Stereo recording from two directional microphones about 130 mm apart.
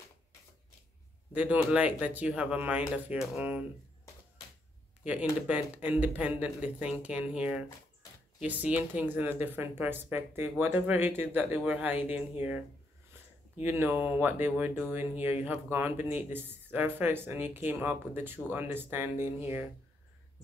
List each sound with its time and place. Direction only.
1.3 s speech: 10° right (ahead or behind)
5.0 s speech: 10° right (ahead or behind)
13.7 s speech: 15° right (ahead or behind)